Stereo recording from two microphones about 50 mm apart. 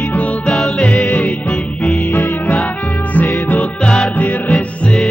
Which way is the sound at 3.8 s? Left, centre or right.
Centre.